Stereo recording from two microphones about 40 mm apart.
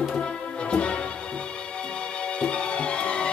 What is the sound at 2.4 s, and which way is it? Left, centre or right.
Music, left.